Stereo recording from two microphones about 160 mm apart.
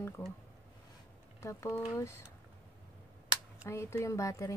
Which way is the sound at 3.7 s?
15° left (ahead or behind).